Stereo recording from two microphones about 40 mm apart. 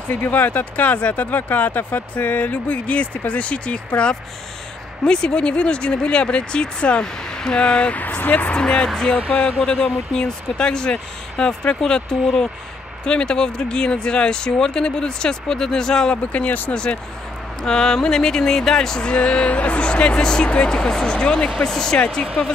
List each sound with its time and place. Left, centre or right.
0.1 s speech: left
7.9 s speech: left
8.5 s speech: left
8.8 s speech: centre
16.3 s speech: left
16.7 s speech: left
21.9 s speech: left